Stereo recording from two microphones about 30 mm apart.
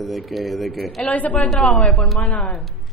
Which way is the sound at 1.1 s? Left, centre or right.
Left.